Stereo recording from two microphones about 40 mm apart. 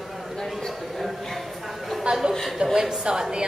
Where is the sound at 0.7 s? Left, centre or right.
Centre.